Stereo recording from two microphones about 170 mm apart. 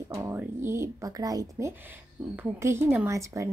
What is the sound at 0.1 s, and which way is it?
Speech, 15° right (ahead or behind).